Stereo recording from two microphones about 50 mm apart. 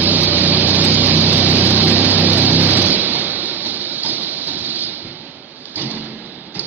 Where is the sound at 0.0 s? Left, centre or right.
Right.